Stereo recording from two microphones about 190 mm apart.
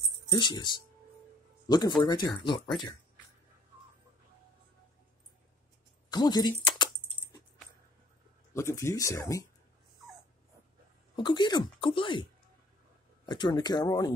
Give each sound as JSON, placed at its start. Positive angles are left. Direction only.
{"t": 0.3, "sound": "speech", "side_deg": 25}
{"t": 1.7, "sound": "speech", "side_deg": 20}
{"t": 6.0, "sound": "speech", "side_deg": 20}
{"t": 8.5, "sound": "speech", "side_deg": 15}
{"t": 11.1, "sound": "speech", "side_deg": 25}